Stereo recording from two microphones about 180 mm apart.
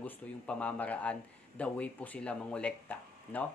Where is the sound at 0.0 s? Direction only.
10° left (ahead or behind).